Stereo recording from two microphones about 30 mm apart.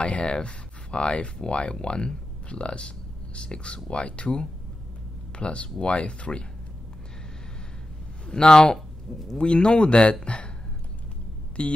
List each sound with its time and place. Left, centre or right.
0.2 s speech: left
8.3 s speech: left
8.7 s speech: centre
9.4 s speech: left
11.6 s speech: left